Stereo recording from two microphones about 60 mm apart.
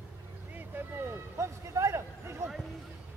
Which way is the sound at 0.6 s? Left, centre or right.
Right.